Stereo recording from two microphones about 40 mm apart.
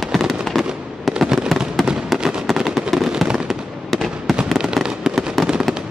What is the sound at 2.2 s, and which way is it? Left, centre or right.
Fireworks, centre.